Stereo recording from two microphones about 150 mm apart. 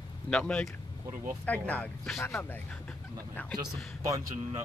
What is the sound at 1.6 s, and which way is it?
Speech, 10° left (ahead or behind).